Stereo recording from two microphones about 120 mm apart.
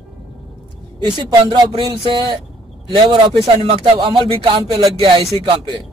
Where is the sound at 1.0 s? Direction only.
35° right (ahead or behind).